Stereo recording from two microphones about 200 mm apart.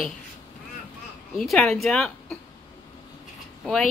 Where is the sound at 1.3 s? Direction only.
Centre (ahead or behind).